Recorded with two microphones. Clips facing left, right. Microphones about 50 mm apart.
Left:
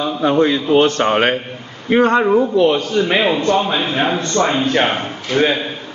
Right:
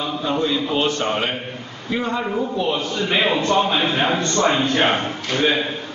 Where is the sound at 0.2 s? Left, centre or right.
Left.